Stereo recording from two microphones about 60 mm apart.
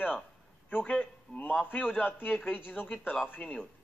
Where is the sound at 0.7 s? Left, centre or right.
Left.